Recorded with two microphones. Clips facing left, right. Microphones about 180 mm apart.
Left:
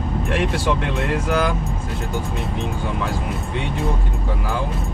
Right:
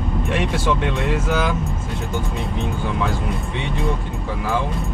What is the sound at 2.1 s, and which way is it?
Speech, centre (ahead or behind).